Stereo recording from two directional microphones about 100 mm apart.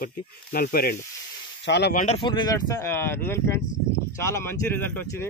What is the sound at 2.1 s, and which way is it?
Speech, 50° left (ahead or behind).